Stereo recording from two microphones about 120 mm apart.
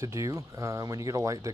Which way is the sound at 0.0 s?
25° right (ahead or behind).